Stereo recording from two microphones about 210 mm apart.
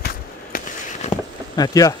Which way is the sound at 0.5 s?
40° left (ahead or behind).